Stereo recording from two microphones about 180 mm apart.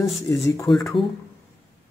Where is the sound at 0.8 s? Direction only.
20° left (ahead or behind).